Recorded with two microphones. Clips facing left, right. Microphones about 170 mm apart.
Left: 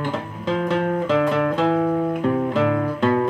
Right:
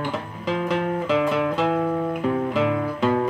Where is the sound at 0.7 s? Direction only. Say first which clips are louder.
Left 2 dB; 5° right (ahead or behind).